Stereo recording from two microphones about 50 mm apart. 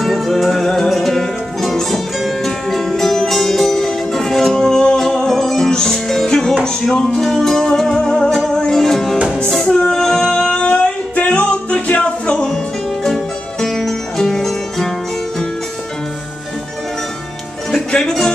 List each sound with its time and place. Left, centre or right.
0.0 s music: centre; by 12.4 s left
13.0 s music: centre
17.6 s music: centre